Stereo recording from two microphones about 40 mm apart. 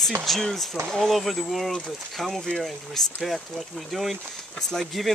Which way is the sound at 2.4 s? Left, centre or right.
Centre.